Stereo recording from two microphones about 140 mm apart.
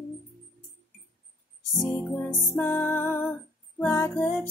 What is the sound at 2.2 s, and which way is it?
Music, 15° left (ahead or behind).